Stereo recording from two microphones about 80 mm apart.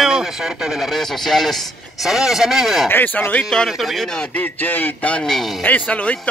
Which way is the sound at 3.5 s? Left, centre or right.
Centre.